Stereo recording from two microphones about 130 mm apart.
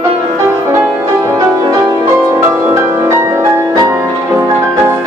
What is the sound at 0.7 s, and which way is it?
Music, 20° right (ahead or behind).